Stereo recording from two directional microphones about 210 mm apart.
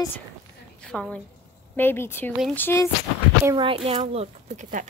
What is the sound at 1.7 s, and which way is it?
Speech, 10° left (ahead or behind).